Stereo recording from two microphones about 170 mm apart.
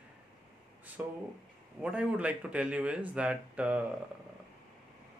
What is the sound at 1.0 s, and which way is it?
Speech, 10° right (ahead or behind).